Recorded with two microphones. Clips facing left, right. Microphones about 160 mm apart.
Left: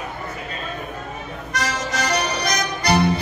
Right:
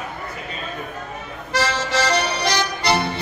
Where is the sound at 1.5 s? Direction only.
30° right (ahead or behind).